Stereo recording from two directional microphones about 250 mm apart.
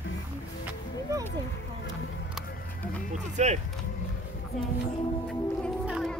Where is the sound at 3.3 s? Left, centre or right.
Right.